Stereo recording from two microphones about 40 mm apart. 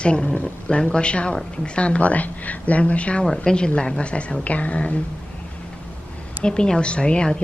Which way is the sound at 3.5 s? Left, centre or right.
Left.